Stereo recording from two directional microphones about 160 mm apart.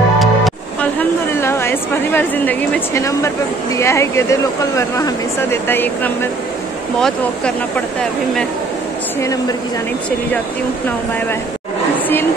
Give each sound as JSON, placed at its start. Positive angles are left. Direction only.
{"t": 0.2, "sound": "music", "side_deg": 0}
{"t": 0.9, "sound": "a woman's voice", "side_deg": 15}
{"t": 9.2, "sound": "speech", "side_deg": 20}